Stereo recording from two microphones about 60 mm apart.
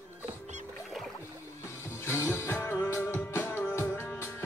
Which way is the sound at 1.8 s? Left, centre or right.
Left.